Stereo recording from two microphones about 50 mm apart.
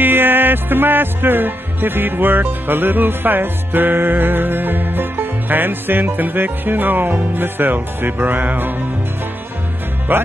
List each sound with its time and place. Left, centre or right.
0.0 s music: right
10.1 s music: right